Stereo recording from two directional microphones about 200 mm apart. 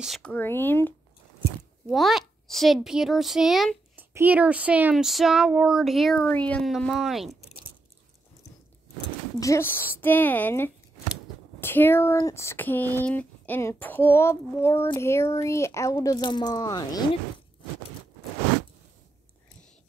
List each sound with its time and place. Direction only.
0.0 s speech: centre (ahead or behind)
1.9 s a woman's voice: centre (ahead or behind)
9.4 s speech: 15° left (ahead or behind)